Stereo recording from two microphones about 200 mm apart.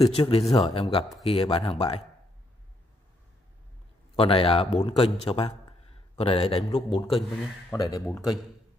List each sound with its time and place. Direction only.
0.0 s speech: 30° left (ahead or behind)
4.2 s speech: 30° left (ahead or behind)
7.7 s speech: 20° left (ahead or behind)